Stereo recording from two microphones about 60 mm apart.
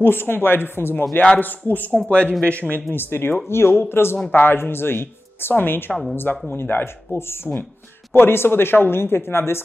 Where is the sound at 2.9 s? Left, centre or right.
Left.